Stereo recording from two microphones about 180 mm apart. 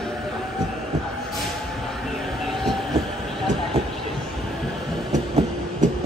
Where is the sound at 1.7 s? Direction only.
Centre (ahead or behind).